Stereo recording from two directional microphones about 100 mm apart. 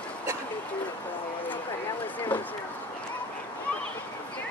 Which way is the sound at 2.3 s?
15° left (ahead or behind).